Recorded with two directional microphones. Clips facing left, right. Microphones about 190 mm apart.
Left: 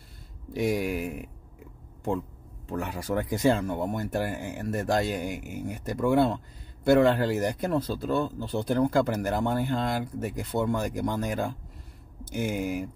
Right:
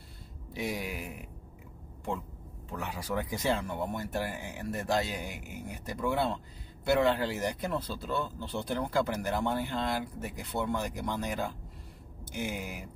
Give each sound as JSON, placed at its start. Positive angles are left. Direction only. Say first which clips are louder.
{"t": 0.5, "sound": "speech", "louder": "left 9 dB", "side_deg": 50}
{"t": 2.7, "sound": "speech", "louder": "left 5 dB", "side_deg": 50}